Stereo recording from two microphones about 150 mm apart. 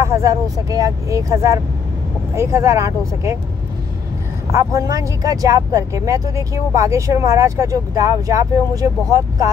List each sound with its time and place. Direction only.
0.0 s speech: 20° right (ahead or behind)
4.6 s speech: 25° right (ahead or behind)